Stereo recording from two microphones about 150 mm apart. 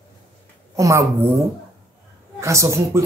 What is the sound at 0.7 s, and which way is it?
Speech, 20° right (ahead or behind).